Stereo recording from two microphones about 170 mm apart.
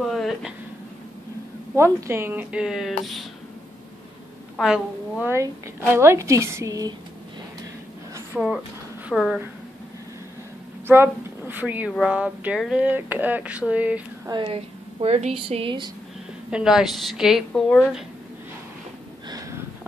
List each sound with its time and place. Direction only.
0.0 s a sound: centre (ahead or behind)
1.8 s speech: 15° right (ahead or behind); by 3.3 s centre (ahead or behind)
4.6 s a woman's voice: 5° right (ahead or behind)
5.3 s speech: 15° right (ahead or behind)
8.3 s a woman's voice: centre (ahead or behind)
10.9 s speech: 10° right (ahead or behind)
14.3 s speech: 30° right (ahead or behind)
16.4 s a woman's voice: 5° right (ahead or behind)
17.5 s speech: 10° left (ahead or behind)